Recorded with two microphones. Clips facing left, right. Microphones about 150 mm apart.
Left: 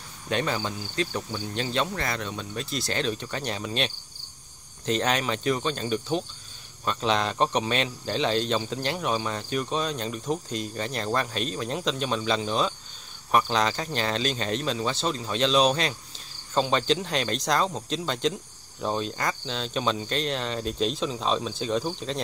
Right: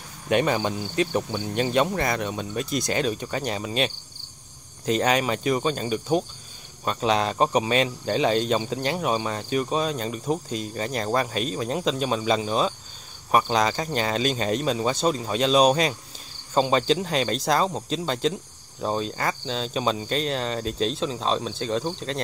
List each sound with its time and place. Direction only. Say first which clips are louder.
0.3 s speech: right 6 dB; 15° right (ahead or behind)
12.4 s speech: right 2 dB; 40° right (ahead or behind)
13.5 s speech: right 3 dB; 10° right (ahead or behind)
16.5 s speech: right 3 dB; 5° right (ahead or behind)